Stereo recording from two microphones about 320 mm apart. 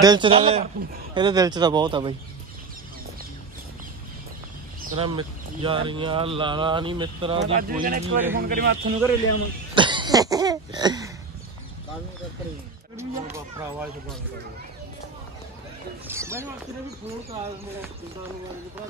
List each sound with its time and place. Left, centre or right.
0.0 s speech: centre
4.8 s a man's voice: centre
9.8 s cough: centre
12.9 s speech: centre
16.1 s speech: centre